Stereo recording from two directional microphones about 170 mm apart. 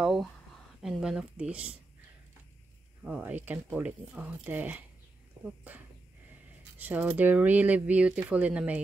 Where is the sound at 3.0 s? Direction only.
10° right (ahead or behind).